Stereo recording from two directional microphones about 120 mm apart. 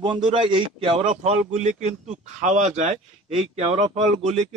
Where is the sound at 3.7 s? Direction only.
70° right (ahead or behind).